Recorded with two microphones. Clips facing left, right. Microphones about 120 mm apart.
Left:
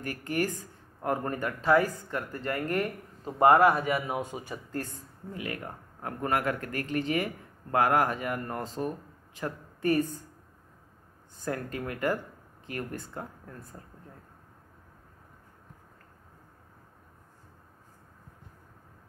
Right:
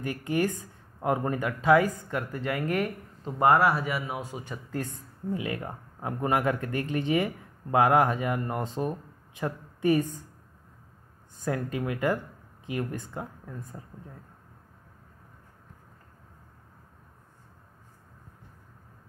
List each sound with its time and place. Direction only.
0.0 s a man's voice: 20° right (ahead or behind); by 3.3 s centre (ahead or behind)
3.5 s speech: 45° left (ahead or behind)
4.2 s speech: 20° left (ahead or behind)
5.3 s a man's voice: 25° right (ahead or behind)
11.4 s speech: 15° right (ahead or behind)